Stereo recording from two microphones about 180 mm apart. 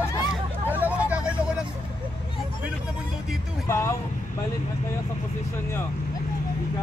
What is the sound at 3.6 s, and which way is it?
Speech, 15° left (ahead or behind).